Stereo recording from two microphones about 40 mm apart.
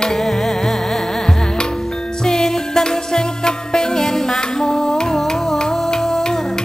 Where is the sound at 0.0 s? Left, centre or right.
Centre.